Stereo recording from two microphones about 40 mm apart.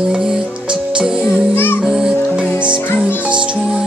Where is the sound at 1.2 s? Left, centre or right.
Left.